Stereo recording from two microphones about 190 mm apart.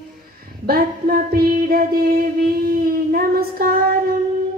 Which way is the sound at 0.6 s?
55° right (ahead or behind).